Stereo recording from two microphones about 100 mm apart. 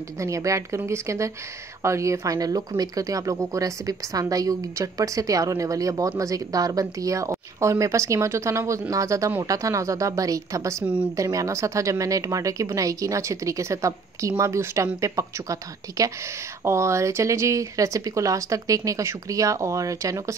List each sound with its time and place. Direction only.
0.2 s a woman's voice: 35° right (ahead or behind)